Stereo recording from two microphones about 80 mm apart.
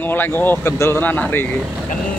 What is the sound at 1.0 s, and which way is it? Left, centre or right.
Speech, left.